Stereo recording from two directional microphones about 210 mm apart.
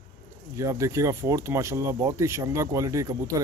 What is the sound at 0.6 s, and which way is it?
Speech, 15° right (ahead or behind).